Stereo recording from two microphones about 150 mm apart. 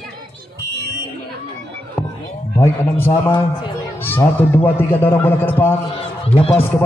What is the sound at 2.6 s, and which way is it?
A man's voice, 15° left (ahead or behind).